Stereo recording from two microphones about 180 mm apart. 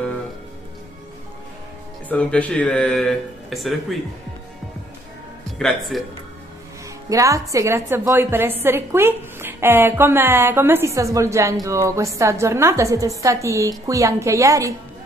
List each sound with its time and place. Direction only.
2.0 s speech: 5° left (ahead or behind)
5.6 s speech: centre (ahead or behind)
7.1 s a woman's voice: 20° right (ahead or behind)